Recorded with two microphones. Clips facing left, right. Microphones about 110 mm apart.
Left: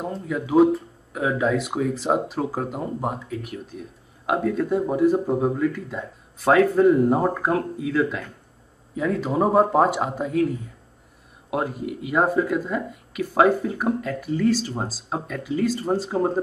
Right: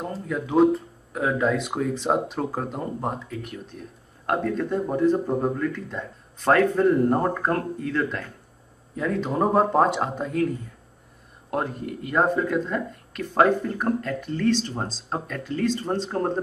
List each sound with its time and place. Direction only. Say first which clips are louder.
0.0 s speech: left 1 dB; 5° left (ahead or behind)